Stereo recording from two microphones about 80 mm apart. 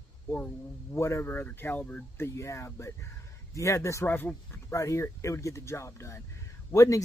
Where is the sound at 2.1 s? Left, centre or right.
Left.